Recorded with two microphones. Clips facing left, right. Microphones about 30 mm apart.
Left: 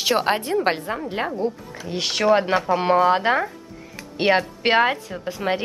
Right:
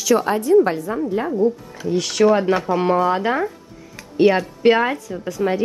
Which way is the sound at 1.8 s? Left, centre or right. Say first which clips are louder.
Right 4 dB; left.